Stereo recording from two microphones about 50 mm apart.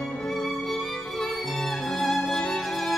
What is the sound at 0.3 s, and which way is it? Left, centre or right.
Music, centre.